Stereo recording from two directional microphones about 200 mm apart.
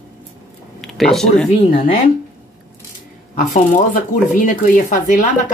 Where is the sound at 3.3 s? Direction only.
45° left (ahead or behind).